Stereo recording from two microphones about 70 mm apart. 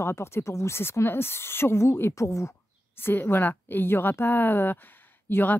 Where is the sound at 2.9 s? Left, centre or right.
Left.